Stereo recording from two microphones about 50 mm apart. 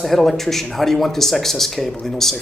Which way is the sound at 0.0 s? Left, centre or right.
Centre.